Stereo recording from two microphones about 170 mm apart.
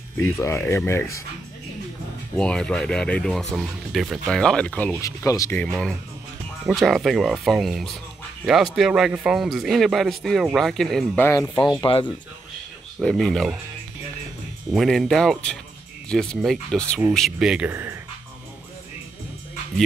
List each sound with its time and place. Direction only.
0.2 s speech: 15° left (ahead or behind)
2.3 s speech: 5° left (ahead or behind)
5.0 s speech: 20° left (ahead or behind)
5.6 s speech: 5° left (ahead or behind)
11.2 s speech: 15° left (ahead or behind)
11.8 s speech: 30° left (ahead or behind)
13.0 s speech: centre (ahead or behind)
14.7 s speech: centre (ahead or behind)